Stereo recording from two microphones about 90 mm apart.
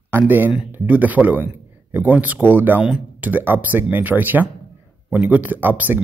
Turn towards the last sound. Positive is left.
turn(degrees=-20)  # may be behind; listen again after turning